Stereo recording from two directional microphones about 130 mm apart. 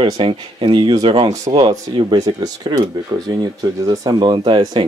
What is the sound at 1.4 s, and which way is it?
Speech, 30° right (ahead or behind).